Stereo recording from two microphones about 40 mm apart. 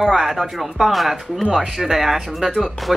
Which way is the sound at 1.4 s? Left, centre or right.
Centre.